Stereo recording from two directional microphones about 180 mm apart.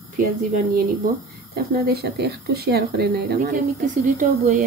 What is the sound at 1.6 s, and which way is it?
Speech, 60° right (ahead or behind).